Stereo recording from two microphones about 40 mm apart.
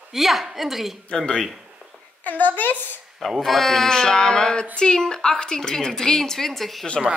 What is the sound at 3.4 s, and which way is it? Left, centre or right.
A woman's voice, centre.